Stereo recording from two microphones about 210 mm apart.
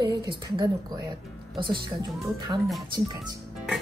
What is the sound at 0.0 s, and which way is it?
Speech, 20° right (ahead or behind).